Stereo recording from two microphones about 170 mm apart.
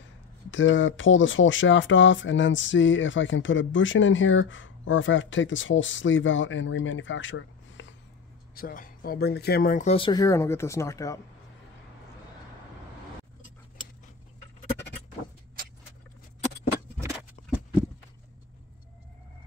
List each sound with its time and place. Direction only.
0.0 s speech: 90° left
8.5 s speech: 55° left (ahead or behind)
9.8 s speech: 30° left (ahead or behind)